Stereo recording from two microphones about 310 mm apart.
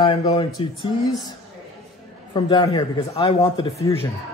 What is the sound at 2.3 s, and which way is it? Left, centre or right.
A man's voice, centre.